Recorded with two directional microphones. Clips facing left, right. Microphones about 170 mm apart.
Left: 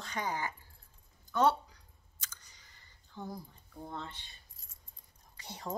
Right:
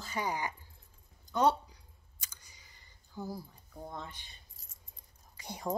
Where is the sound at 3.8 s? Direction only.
10° right (ahead or behind).